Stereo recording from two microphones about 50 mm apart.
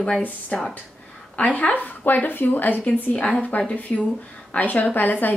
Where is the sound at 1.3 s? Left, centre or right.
Left.